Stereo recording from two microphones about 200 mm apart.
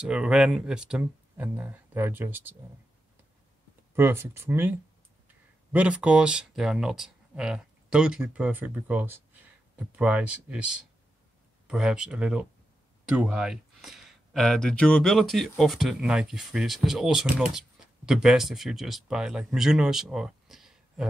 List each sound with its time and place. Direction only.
0.0 s speech: 5° right (ahead or behind)
3.9 s speech: 10° right (ahead or behind)